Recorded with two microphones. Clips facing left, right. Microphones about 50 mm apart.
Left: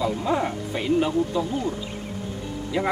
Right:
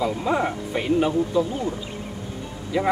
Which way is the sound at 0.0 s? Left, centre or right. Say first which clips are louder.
Right 1 dB; centre.